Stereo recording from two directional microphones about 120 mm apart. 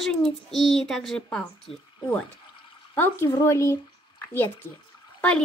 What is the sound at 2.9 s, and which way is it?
Speech, 15° left (ahead or behind).